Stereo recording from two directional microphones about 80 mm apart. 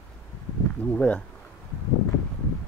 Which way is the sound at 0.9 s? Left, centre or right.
Centre.